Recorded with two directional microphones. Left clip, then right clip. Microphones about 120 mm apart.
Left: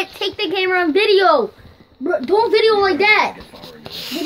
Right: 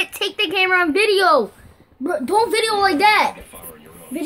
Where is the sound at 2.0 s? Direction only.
55° right (ahead or behind).